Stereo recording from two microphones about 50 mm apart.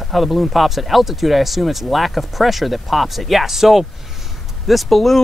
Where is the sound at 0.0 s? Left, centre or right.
Centre.